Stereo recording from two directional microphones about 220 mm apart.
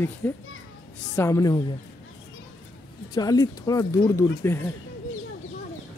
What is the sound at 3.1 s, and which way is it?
Speech, 15° left (ahead or behind).